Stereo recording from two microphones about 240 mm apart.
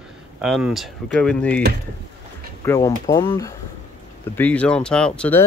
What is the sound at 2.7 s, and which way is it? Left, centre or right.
Speech, centre.